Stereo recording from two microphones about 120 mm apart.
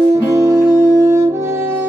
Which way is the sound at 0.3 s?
25° right (ahead or behind).